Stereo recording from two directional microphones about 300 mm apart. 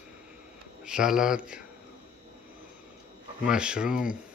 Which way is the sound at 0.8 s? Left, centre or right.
Centre.